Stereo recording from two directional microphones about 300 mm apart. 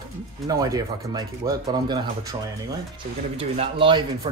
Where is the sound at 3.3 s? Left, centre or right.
Centre.